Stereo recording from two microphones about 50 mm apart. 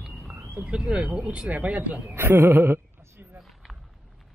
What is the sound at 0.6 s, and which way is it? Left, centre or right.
Speech, centre.